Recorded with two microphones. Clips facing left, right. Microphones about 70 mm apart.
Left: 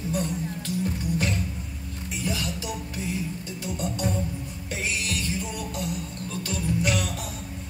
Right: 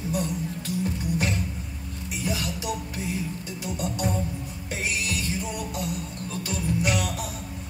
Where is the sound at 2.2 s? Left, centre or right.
Centre.